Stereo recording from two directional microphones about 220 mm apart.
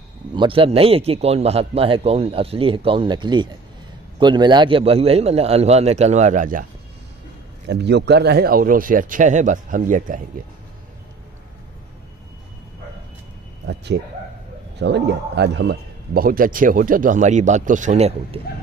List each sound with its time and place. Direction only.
0.3 s a man's voice: 25° right (ahead or behind)
7.6 s a man's voice: 50° right (ahead or behind)
13.7 s a man's voice: 50° right (ahead or behind); by 18.4 s 30° right (ahead or behind)